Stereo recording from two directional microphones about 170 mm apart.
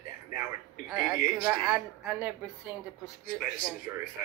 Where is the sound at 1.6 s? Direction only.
5° right (ahead or behind).